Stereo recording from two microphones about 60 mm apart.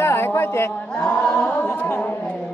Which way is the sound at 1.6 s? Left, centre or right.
Left.